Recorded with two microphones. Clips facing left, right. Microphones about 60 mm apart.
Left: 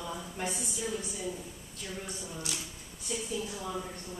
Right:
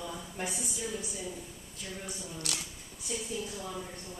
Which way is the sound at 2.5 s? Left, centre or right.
Right.